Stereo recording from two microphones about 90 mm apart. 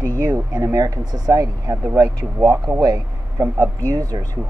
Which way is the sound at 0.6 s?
45° right (ahead or behind).